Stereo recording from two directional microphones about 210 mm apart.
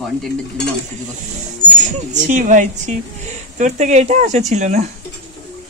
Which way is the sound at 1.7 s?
35° right (ahead or behind).